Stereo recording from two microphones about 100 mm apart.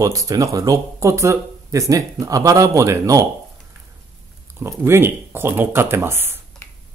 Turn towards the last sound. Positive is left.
turn(degrees=-25)  # may be behind; listen again after turning